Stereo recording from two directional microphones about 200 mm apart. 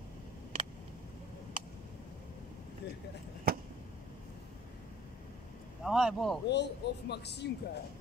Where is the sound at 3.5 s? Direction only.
50° right (ahead or behind).